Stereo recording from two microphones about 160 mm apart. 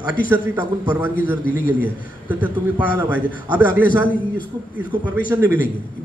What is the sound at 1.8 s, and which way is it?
A man's voice, 10° right (ahead or behind).